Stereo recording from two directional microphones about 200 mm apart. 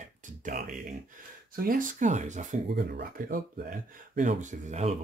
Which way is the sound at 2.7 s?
50° right (ahead or behind).